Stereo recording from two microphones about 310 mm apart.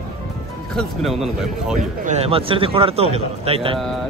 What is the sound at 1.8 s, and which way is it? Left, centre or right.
A man's voice, right.